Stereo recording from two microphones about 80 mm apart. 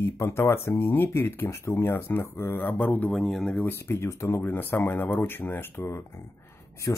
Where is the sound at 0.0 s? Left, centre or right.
Left.